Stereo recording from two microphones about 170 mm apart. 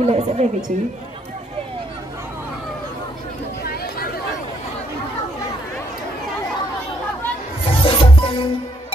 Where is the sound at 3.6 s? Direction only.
65° left (ahead or behind).